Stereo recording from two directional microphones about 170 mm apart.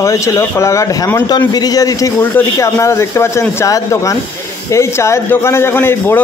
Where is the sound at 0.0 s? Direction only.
20° left (ahead or behind).